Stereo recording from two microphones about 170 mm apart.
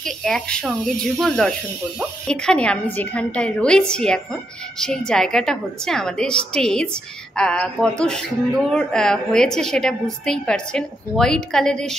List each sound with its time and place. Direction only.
0.0 s a woman's voice: 5° left (ahead or behind)